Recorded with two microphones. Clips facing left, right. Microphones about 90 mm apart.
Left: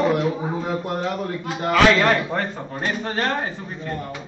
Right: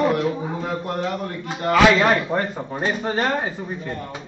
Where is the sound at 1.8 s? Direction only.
10° right (ahead or behind).